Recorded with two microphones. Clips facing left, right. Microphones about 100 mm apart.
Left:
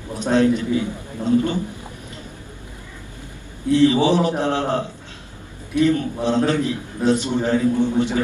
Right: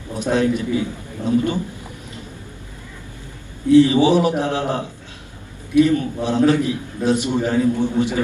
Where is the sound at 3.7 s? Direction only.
15° right (ahead or behind).